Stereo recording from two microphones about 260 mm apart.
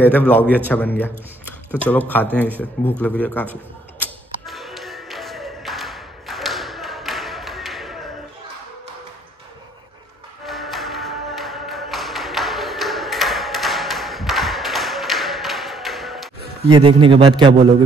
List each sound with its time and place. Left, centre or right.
0.0 s a man's voice: centre
4.0 s music: centre
10.4 s music: centre
16.6 s a man's voice: centre